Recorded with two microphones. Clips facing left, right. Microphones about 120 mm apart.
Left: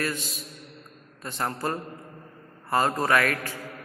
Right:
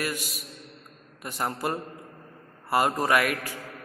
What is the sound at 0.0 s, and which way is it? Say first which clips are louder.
A man's voice: left 1 dB; 15° right (ahead or behind).